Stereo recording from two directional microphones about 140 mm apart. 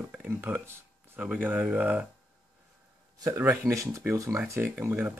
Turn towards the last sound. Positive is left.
turn(degrees=-10)  # may be behind; listen again after turning